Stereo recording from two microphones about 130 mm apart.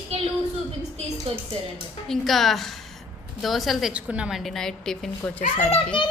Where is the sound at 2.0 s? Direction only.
Centre (ahead or behind).